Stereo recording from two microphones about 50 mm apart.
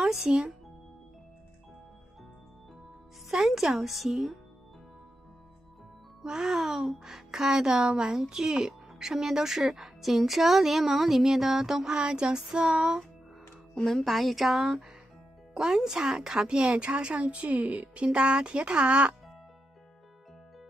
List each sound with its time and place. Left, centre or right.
0.0 s speech: centre
3.3 s speech: centre
6.2 s speech: centre
13.7 s speech: centre
14.0 s speech: centre; by 18.0 s right
18.0 s speech: right